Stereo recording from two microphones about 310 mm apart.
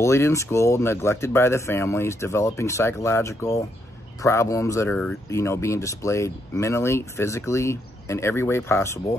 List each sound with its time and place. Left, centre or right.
0.0 s speech: centre